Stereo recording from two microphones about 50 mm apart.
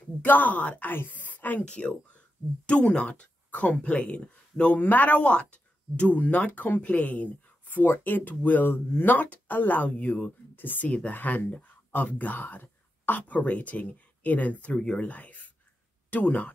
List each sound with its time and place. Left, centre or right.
0.2 s a woman's voice: left
1.6 s speech: left
7.8 s speech: left
9.1 s speech: left
10.5 s speech: left
10.9 s speech: left